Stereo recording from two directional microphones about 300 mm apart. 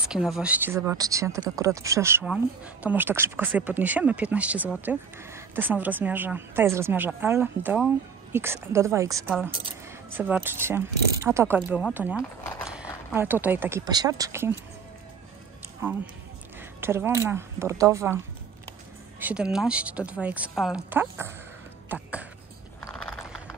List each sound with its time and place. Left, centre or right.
0.1 s speech: centre
15.8 s speech: centre
21.8 s a sound: centre